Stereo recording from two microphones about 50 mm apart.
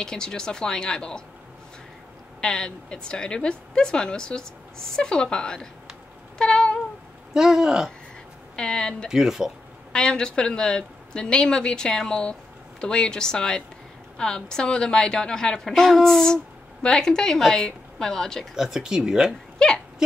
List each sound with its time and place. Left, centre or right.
0.0 s speech: centre
2.4 s speech: centre
6.3 s cat: centre
7.3 s speech: centre
8.5 s speech: centre
9.1 s speech: centre
9.9 s speech: centre
18.5 s speech: centre
19.6 s speech: centre